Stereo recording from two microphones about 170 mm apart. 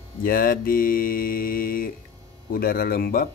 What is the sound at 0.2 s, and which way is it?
Mantra, 55° left (ahead or behind).